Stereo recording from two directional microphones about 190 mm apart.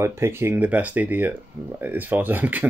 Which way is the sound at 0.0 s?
15° right (ahead or behind).